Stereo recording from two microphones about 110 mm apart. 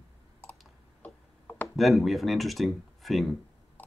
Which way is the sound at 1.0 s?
15° left (ahead or behind).